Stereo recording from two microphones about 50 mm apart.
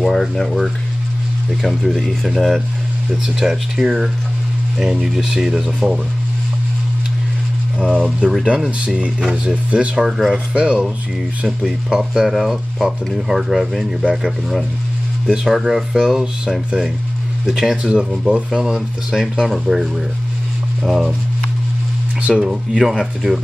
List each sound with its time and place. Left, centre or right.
0.0 s speech: centre
3.3 s speech: centre
7.9 s speech: right
10.0 s speech: centre
10.5 s speech: centre
11.4 s speech: centre
15.2 s speech: centre
22.3 s speech: centre